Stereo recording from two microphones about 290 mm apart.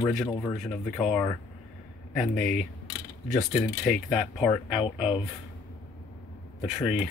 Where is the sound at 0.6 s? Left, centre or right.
Centre.